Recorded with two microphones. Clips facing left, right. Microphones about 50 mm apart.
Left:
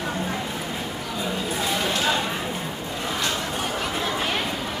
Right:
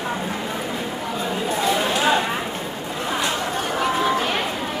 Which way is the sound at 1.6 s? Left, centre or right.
Centre.